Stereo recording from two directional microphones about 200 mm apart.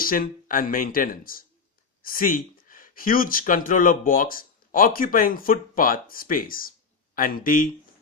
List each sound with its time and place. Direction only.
0.0 s speech: 45° left (ahead or behind)